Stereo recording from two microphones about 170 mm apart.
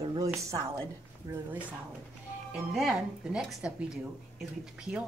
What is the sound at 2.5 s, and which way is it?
Speech, 5° right (ahead or behind).